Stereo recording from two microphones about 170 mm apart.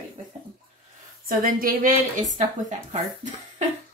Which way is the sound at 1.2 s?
55° right (ahead or behind).